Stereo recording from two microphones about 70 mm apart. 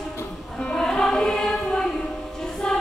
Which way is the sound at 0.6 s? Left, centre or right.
Centre.